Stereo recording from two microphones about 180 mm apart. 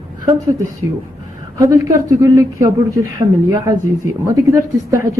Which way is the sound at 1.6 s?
20° right (ahead or behind).